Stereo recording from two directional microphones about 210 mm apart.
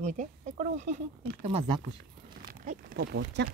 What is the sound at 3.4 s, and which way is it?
Speech, 55° right (ahead or behind).